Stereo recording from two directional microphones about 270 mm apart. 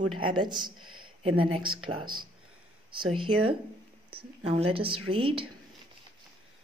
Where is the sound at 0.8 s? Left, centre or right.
Right.